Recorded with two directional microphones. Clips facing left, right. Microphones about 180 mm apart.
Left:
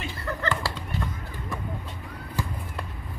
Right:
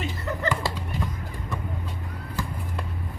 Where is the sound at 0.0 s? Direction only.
20° right (ahead or behind).